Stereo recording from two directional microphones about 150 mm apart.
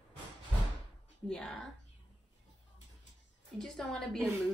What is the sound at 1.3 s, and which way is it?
Speech, 5° left (ahead or behind).